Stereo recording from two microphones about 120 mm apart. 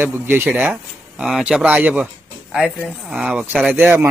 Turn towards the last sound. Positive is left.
turn(degrees=-15)  # may be behind; listen again after turning